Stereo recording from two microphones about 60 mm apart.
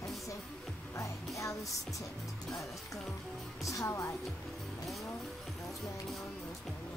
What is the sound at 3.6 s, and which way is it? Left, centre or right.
Speech, left.